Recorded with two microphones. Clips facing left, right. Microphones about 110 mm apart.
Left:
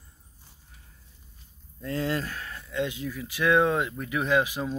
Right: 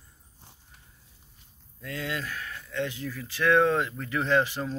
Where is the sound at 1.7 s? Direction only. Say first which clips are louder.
Left 5 dB; 35° left (ahead or behind).